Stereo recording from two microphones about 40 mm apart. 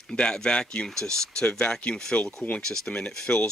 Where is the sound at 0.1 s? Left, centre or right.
Left.